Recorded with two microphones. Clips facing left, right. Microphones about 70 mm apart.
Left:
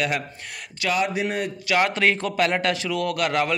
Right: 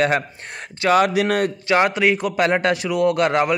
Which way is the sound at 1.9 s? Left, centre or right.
Centre.